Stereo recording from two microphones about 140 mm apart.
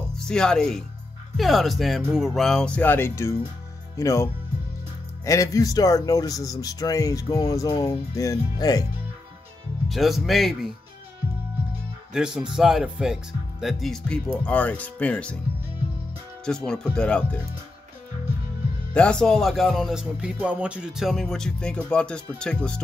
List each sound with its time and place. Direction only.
0.2 s music: 5° left (ahead or behind)
3.9 s speech: 20° left (ahead or behind)
9.8 s music: centre (ahead or behind)
12.1 s music: 5° right (ahead or behind)
14.4 s speech: 10° left (ahead or behind)
16.4 s music: 5° left (ahead or behind)
18.9 s music: 5° left (ahead or behind)